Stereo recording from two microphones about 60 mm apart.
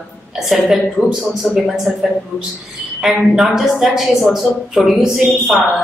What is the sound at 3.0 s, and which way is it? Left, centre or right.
A woman's voice, centre.